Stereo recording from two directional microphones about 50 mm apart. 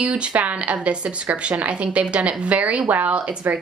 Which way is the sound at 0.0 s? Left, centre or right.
Right.